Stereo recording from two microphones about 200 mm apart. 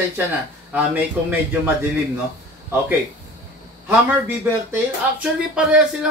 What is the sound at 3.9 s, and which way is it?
A man's voice, 10° right (ahead or behind).